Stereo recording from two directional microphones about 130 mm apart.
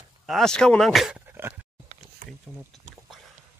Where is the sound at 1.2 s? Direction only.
15° right (ahead or behind).